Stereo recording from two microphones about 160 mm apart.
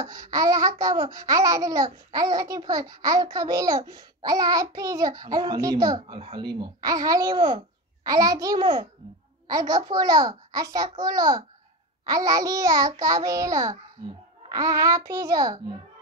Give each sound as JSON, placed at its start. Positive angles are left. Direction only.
{"t": 0.0, "sound": "a child's voice", "side_deg": -20}